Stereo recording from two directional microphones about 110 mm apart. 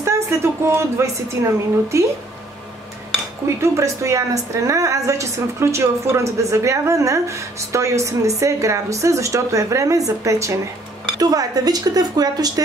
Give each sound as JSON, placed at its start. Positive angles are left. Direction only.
{"t": 0.0, "sound": "a woman's voice", "side_deg": -25}
{"t": 3.4, "sound": "a woman's voice", "side_deg": -25}